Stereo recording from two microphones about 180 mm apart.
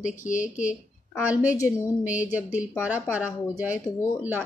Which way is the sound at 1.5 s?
15° left (ahead or behind).